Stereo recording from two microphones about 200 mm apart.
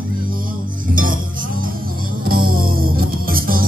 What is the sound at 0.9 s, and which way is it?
Music, 45° right (ahead or behind).